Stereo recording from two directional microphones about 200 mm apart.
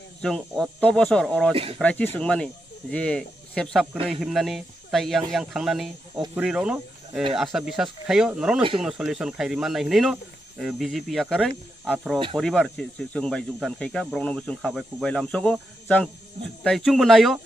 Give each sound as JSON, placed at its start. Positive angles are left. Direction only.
{"t": 0.2, "sound": "speech", "side_deg": 5}
{"t": 1.5, "sound": "speech", "side_deg": -30}
{"t": 1.8, "sound": "speech", "side_deg": 5}